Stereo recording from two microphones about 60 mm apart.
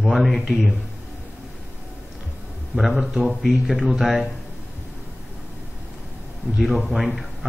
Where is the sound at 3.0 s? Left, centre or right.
Centre.